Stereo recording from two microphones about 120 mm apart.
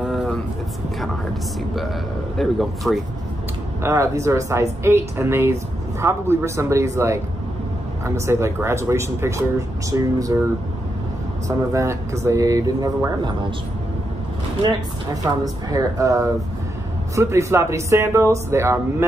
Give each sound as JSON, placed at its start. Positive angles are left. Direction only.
{"t": 1.0, "sound": "speech", "side_deg": 0}
{"t": 3.8, "sound": "speech", "side_deg": -25}
{"t": 11.4, "sound": "speech", "side_deg": -25}
{"t": 15.2, "sound": "speech", "side_deg": -30}